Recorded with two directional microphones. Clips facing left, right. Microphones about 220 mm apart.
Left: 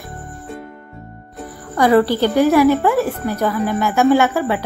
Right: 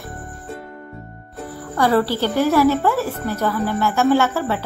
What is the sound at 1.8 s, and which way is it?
Speech, 15° left (ahead or behind).